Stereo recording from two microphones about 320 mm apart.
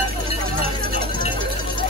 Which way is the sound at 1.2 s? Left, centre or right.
Centre.